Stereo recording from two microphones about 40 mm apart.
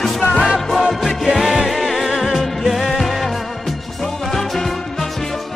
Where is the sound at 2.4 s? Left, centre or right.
Centre.